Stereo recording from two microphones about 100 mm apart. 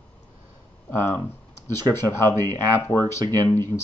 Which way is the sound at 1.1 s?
25° left (ahead or behind).